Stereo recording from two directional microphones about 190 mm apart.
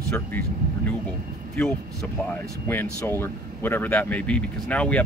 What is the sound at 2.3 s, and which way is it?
A man's voice, 10° left (ahead or behind).